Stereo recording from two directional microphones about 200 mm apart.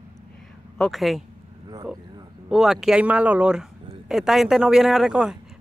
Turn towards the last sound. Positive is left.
turn(degrees=0)  # may be behind; listen again after turning